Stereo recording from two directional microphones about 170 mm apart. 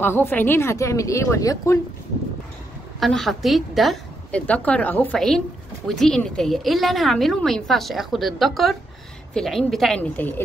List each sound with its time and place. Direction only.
0.0 s speech: 15° left (ahead or behind)
3.0 s a woman's voice: centre (ahead or behind)